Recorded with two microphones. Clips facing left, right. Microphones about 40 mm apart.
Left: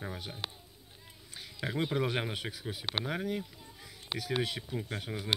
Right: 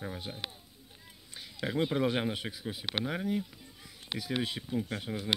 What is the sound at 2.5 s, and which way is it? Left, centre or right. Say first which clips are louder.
Speech: right 1 dB; centre.